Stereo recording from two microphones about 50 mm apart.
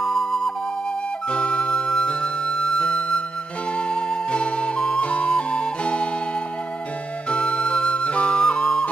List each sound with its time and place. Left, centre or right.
0.0 s music: centre
1.3 s music: left
3.9 s flute: centre
7.2 s music: left